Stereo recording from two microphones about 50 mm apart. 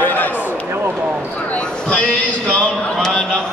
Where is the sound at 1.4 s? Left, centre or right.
Left.